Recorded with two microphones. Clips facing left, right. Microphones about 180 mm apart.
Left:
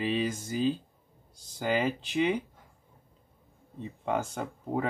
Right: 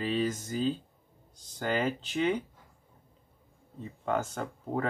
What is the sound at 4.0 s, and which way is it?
Speech, 10° left (ahead or behind).